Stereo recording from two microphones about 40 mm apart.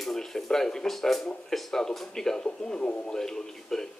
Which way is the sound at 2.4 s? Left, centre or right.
Left.